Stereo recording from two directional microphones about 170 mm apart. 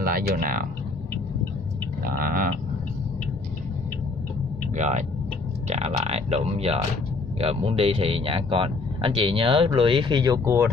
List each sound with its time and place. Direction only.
0.0 s speech: 55° right (ahead or behind)
2.0 s speech: 55° right (ahead or behind)
4.7 s speech: 45° right (ahead or behind); by 10.6 s 20° right (ahead or behind)